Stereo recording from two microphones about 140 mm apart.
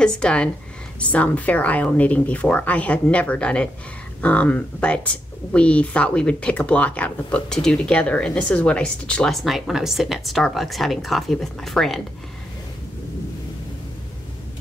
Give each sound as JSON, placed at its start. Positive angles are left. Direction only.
{"t": 0.0, "sound": "speech", "side_deg": 5}